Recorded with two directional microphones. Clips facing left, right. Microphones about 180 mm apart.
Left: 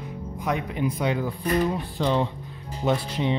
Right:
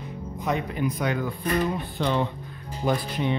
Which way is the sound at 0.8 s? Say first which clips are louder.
Left 1 dB; 25° left (ahead or behind).